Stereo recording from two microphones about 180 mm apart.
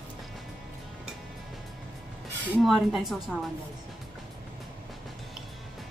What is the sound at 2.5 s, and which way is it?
Speech, centre (ahead or behind).